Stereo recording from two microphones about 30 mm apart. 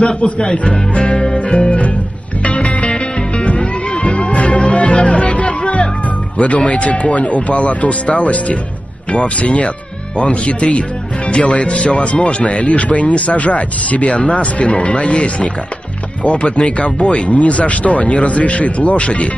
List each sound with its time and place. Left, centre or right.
0.0 s speech: left
2.4 s music: left
6.3 s speech: left